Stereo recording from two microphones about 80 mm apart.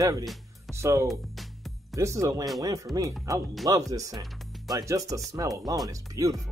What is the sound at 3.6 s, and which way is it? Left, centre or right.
Speech, right.